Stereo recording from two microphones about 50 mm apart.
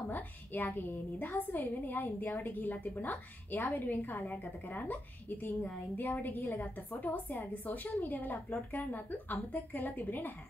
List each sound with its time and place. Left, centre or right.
0.1 s a woman's voice: left